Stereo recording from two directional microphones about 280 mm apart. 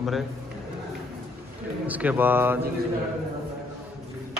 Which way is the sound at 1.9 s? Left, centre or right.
Centre.